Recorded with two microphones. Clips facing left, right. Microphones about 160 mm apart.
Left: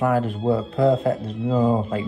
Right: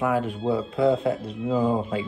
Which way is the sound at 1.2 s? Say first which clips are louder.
Left 3 dB; 35° left (ahead or behind).